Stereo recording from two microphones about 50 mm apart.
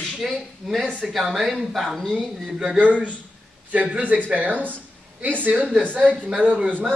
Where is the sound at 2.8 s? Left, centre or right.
Right.